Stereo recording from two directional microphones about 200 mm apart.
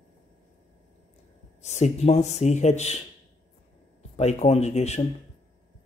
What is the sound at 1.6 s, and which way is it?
Speech, 35° left (ahead or behind).